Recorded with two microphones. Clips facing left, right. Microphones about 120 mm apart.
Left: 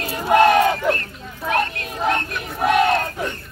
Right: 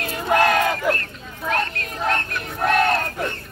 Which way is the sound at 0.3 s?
20° left (ahead or behind).